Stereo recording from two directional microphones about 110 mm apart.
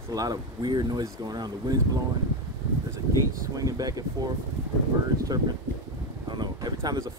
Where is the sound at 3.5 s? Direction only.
35° right (ahead or behind).